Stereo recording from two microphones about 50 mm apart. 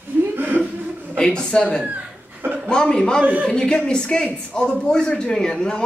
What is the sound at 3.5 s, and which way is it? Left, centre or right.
A man's voice, centre.